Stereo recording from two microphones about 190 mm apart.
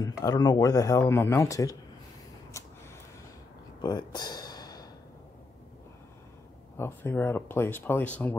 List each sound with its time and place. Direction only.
0.0 s speech: 20° left (ahead or behind)
3.8 s a sound: 20° left (ahead or behind)
6.8 s speech: 15° left (ahead or behind)